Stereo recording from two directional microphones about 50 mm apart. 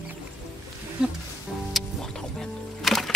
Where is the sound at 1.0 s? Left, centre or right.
Centre.